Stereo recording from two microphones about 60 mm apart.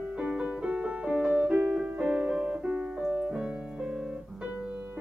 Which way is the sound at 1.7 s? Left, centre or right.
Centre.